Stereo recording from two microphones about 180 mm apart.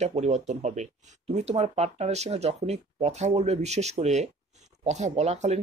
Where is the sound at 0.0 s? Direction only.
40° right (ahead or behind).